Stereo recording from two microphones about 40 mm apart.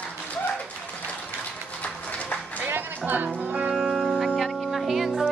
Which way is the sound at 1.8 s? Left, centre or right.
Left.